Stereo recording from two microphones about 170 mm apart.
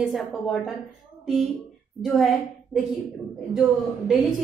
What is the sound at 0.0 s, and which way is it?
A woman's voice, centre (ahead or behind).